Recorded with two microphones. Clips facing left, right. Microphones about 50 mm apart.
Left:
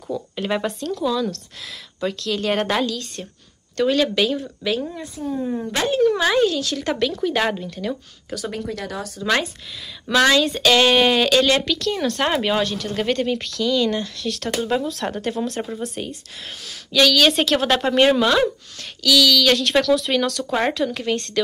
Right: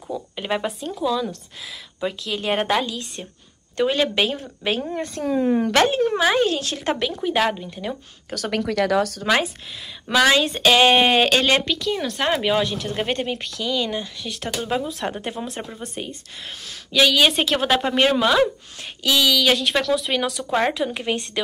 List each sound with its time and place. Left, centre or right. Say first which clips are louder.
0.1 s speech: left 2 dB; centre; by 4.8 s right
5.1 s speech: right 4 dB; right
5.4 s speech: right 7 dB; right
5.9 s a woman's voice: left 3 dB; right
6.1 s speech: even; centre
6.4 s a woman's voice: left 1 dB; right
7.2 s speech: right 4 dB; centre
8.5 s speech: right 8 dB; right
10.1 s speech: left 1 dB; right
11.7 s speech: left 2 dB; centre
12.7 s speech: left 2 dB; right; by 16.2 s centre
16.9 s speech: left 1 dB; centre
18.8 s speech: left 3 dB; right
19.3 s speech: left 2 dB; centre